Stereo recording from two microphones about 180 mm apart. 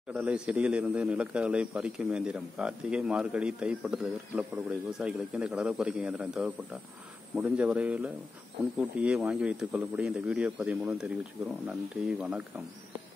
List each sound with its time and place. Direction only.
0.1 s a man's voice: 5° right (ahead or behind)